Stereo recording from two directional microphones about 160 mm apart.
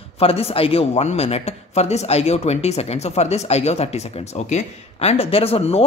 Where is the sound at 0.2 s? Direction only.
35° left (ahead or behind).